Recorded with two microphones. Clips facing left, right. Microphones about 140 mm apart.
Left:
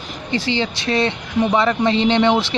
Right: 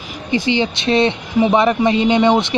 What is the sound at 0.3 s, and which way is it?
A man's voice, 15° right (ahead or behind).